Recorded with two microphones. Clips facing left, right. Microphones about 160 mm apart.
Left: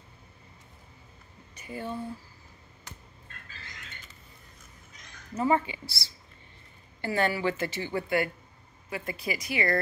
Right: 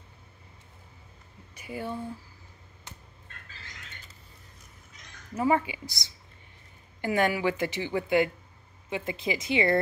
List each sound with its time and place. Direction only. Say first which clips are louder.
1.5 s speech: right 1 dB; 10° right (ahead or behind)
5.3 s speech: right 1 dB; 10° right (ahead or behind)